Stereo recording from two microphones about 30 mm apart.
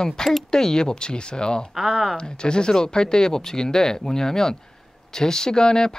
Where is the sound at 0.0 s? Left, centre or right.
Left.